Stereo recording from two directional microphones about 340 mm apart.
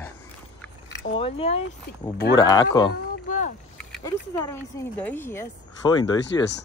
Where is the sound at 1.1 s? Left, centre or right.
Centre.